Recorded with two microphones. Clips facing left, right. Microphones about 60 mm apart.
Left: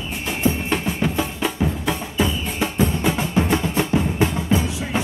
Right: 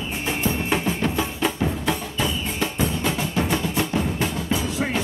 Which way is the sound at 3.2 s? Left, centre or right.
Left.